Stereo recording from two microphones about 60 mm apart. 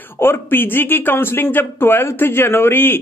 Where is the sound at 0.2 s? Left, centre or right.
Left.